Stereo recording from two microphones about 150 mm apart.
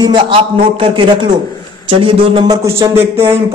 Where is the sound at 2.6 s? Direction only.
20° right (ahead or behind).